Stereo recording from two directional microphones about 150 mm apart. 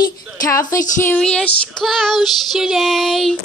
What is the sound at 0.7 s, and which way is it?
Speech, 20° left (ahead or behind).